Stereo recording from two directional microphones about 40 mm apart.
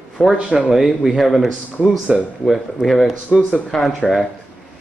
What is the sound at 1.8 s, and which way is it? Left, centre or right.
Speech, centre.